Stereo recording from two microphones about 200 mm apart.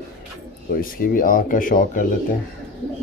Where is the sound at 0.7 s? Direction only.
45° left (ahead or behind).